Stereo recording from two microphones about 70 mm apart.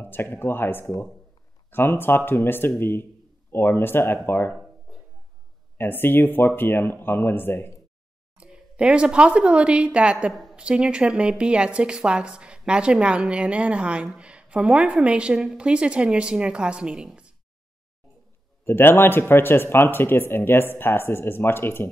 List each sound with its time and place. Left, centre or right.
0.0 s speech: left
5.8 s speech: left
8.4 s a woman's voice: centre
18.6 s speech: left